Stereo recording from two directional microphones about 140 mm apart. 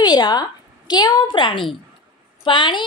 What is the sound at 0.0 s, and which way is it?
A woman's voice, 30° left (ahead or behind).